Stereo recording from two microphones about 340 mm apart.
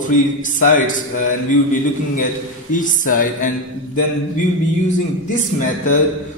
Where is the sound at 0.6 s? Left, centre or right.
Left.